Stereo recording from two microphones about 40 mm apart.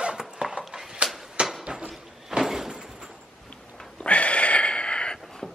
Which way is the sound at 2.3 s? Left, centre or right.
Centre.